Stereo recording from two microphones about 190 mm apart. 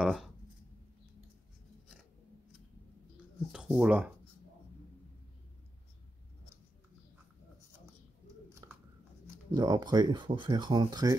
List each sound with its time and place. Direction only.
0.0 s speech: centre (ahead or behind)
3.5 s speech: 5° right (ahead or behind)
8.6 s a sound: 20° right (ahead or behind)
9.5 s speech: 20° right (ahead or behind)